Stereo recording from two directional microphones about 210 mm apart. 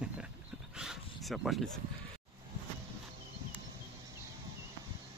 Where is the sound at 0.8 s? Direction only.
Centre (ahead or behind).